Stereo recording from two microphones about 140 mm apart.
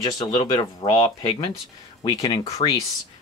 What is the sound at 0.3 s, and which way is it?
Speech, 35° left (ahead or behind).